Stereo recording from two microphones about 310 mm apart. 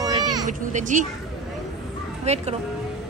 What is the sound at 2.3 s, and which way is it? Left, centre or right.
Speech, right.